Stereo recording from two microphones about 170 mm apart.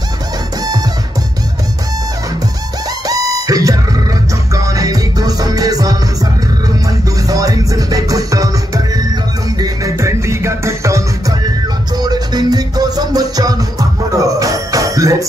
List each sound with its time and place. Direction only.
3.1 s music: 20° right (ahead or behind)